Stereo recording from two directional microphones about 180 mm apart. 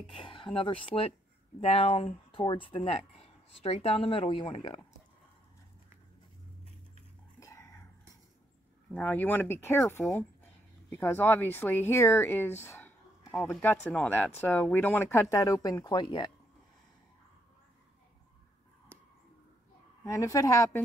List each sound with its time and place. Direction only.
0.1 s speech: 30° left (ahead or behind)
7.3 s dog: 15° left (ahead or behind)
8.9 s speech: 10° left (ahead or behind); by 16.3 s 25° left (ahead or behind)
20.0 s speech: 15° left (ahead or behind)